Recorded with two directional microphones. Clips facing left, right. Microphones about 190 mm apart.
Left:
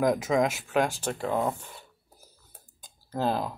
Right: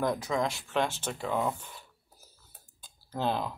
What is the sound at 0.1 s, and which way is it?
Speech, 15° left (ahead or behind).